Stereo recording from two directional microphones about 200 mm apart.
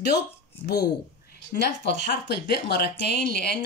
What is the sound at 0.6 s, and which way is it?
Speech, 55° left (ahead or behind).